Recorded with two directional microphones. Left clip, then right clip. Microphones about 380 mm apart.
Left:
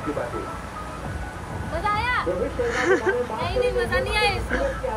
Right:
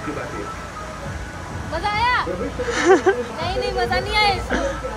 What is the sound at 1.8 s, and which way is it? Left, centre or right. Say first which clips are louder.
Speech: right 4 dB; right.